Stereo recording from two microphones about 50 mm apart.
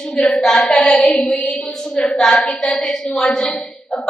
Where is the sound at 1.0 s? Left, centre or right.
Left.